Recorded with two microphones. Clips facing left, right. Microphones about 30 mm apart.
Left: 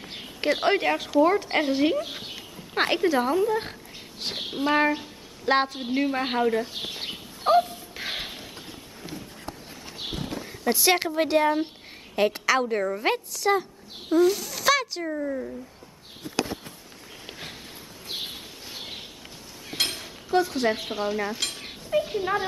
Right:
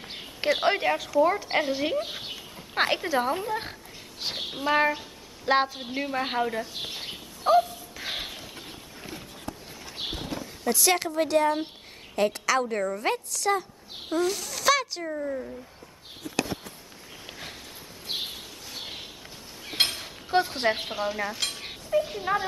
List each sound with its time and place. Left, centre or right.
0.1 s a sound: centre
0.8 s a woman's voice: centre
7.4 s a sound: left
10.6 s a woman's voice: left; by 15.5 s centre
18.2 s bird: centre
19.8 s a sound: right
20.2 s a woman's voice: right
20.9 s stir: centre
22.0 s speech: centre